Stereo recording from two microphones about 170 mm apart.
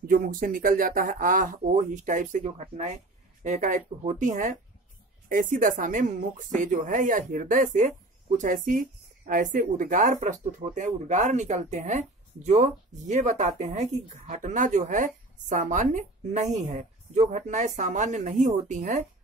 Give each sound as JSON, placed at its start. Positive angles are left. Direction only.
{"t": 0.0, "sound": "speech", "side_deg": -55}